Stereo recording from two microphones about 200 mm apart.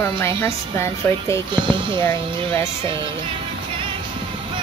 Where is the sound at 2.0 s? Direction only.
10° left (ahead or behind).